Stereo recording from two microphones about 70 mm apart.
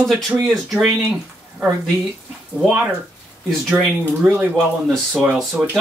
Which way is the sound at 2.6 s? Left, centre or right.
Centre.